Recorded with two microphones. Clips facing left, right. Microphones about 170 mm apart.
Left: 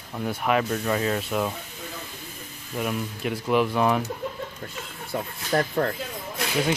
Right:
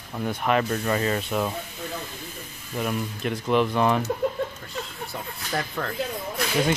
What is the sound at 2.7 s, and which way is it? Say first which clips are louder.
Speech: right 1 dB; 5° left (ahead or behind).